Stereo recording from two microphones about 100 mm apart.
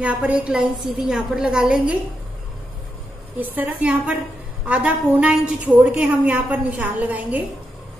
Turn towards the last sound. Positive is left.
turn(degrees=-15)  # may be behind; listen again after turning